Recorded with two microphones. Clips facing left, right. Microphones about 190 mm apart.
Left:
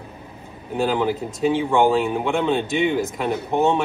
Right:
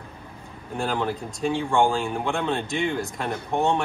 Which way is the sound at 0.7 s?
20° left (ahead or behind).